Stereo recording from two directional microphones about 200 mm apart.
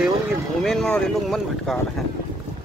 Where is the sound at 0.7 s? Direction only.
5° left (ahead or behind).